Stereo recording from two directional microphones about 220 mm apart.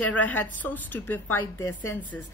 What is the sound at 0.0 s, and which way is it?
A woman's voice, 5° left (ahead or behind).